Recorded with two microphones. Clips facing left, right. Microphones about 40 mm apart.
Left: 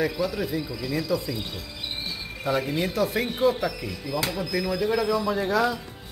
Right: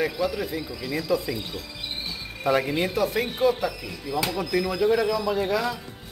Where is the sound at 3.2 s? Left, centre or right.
Centre.